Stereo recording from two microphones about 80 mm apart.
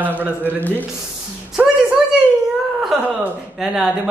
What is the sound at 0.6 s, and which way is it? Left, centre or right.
Speech, left.